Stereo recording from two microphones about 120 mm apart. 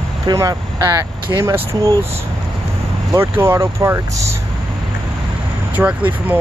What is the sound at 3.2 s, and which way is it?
Speech, 20° right (ahead or behind).